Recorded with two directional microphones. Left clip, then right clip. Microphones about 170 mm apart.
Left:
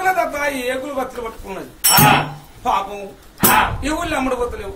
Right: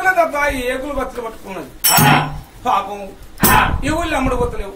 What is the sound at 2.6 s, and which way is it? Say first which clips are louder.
A man's voice: right 2 dB; 10° left (ahead or behind).